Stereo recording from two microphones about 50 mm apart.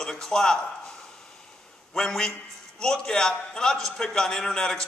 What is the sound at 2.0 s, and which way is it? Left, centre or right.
A man's voice, centre.